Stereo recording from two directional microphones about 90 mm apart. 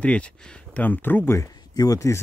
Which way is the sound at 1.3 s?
45° left (ahead or behind).